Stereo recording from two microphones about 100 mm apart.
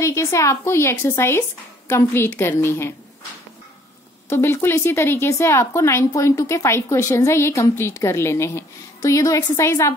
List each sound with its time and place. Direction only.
0.0 s speech: 30° left (ahead or behind)
4.3 s speech: 25° left (ahead or behind)